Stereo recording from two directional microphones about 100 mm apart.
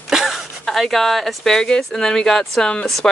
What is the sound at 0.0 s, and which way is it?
Speech, 5° right (ahead or behind).